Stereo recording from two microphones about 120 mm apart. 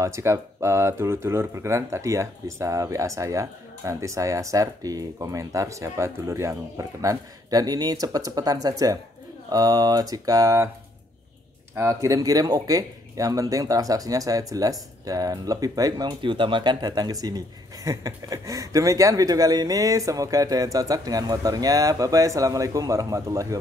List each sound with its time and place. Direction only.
0.0 s speech: 25° right (ahead or behind)
11.7 s speech: 25° right (ahead or behind)